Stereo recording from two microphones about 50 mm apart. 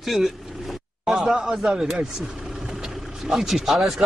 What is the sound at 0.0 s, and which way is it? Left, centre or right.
Vehicle, centre.